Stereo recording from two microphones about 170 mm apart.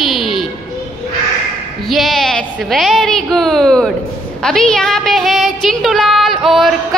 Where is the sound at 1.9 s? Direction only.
Centre (ahead or behind).